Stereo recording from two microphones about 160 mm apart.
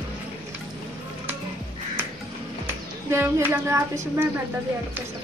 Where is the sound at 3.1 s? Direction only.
15° right (ahead or behind).